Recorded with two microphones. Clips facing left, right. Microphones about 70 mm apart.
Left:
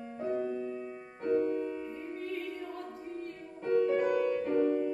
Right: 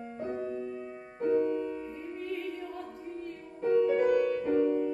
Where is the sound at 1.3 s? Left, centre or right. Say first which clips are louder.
Right 1 dB; right.